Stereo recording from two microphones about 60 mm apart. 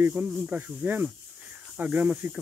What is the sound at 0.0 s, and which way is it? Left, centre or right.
Speech, right.